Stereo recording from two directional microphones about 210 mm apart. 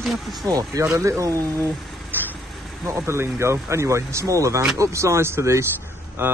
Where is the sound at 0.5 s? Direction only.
15° right (ahead or behind).